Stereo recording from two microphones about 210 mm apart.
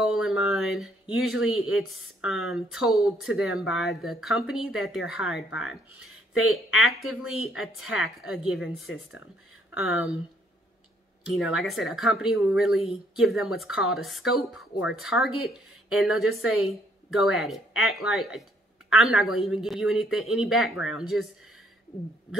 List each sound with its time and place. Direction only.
0.0 s a sound: centre (ahead or behind)
1.2 s speech: centre (ahead or behind)
5.5 s speech: 60° left (ahead or behind)
6.5 s speech: centre (ahead or behind)
11.3 s speech: centre (ahead or behind)